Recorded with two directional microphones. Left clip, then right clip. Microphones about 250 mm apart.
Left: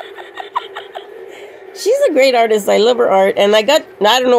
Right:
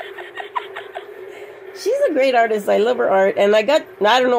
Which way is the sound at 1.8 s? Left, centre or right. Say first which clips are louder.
Left 5 dB; left.